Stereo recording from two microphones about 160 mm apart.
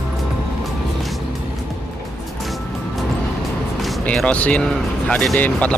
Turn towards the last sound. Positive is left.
turn(degrees=10)  # may be behind; listen again after turning